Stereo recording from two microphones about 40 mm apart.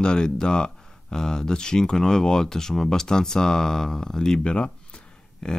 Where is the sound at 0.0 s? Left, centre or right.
Left.